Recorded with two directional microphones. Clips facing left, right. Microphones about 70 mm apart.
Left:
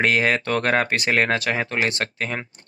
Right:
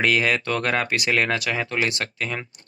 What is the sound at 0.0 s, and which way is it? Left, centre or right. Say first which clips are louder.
Speech: left 1 dB; left.